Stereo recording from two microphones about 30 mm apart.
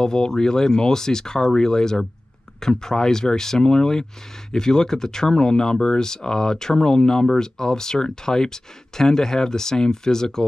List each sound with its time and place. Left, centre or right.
0.0 s speech: left